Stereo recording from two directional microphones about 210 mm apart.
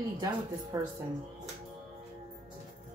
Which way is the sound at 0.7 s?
15° right (ahead or behind).